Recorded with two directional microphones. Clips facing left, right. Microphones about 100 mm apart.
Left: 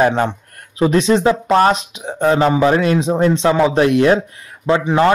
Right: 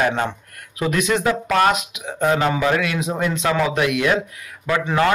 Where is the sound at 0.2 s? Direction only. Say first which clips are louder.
Left 5 dB; 30° left (ahead or behind).